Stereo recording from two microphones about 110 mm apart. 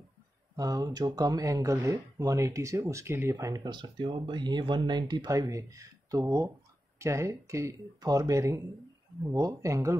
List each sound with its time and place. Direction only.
0.6 s speech: 30° right (ahead or behind)